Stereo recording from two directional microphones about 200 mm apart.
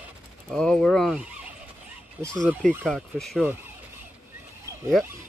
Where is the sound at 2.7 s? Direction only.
5° right (ahead or behind).